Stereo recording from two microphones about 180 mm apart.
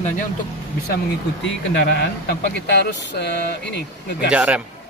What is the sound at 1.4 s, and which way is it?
Speech, 75° left (ahead or behind).